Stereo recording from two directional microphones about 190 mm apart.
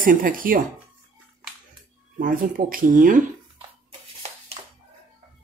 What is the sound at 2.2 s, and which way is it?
A woman's voice, 45° right (ahead or behind).